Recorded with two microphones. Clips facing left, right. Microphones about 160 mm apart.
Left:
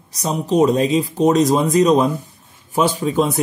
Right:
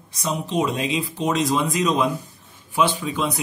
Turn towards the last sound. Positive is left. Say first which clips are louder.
# left 6 dB
turn(degrees=45)  # may be behind; listen again after turning